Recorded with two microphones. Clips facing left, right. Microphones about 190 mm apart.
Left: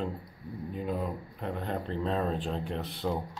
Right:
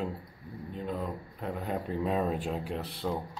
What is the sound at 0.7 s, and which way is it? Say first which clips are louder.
Speech: left 2 dB; 5° left (ahead or behind).